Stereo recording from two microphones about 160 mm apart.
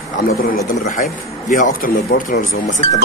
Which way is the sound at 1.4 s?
55° left (ahead or behind).